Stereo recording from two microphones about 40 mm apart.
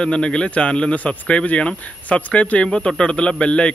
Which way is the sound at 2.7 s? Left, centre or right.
Centre.